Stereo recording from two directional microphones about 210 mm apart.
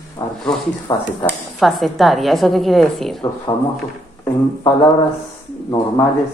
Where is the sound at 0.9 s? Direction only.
15° left (ahead or behind).